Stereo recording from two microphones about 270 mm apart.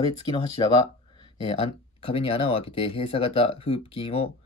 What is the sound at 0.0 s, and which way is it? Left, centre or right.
Speech, centre.